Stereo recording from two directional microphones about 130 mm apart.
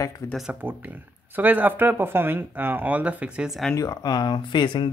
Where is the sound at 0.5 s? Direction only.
15° right (ahead or behind).